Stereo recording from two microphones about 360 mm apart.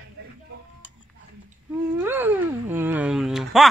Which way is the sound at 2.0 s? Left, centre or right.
Centre.